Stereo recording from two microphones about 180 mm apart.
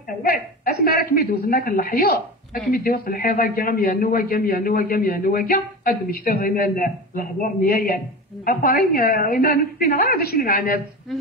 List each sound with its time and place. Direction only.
0.2 s a man's voice: 55° left (ahead or behind)